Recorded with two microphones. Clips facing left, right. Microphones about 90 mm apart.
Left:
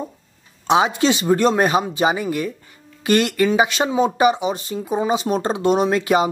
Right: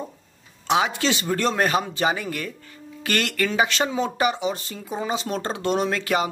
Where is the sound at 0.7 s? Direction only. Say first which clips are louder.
Left 5 dB; 20° left (ahead or behind).